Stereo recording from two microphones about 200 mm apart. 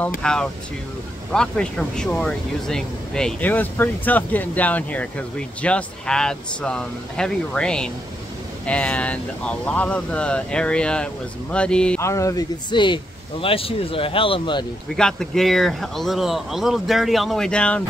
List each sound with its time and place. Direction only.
0.2 s speech: 5° left (ahead or behind); by 14.7 s 25° left (ahead or behind)
15.0 s speech: 5° left (ahead or behind)